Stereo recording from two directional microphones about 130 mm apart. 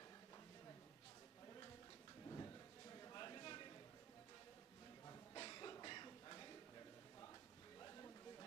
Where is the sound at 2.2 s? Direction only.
25° left (ahead or behind).